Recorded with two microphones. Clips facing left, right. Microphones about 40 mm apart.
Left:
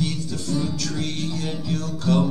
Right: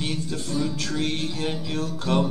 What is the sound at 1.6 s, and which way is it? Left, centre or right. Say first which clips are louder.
Music: left 3 dB; right.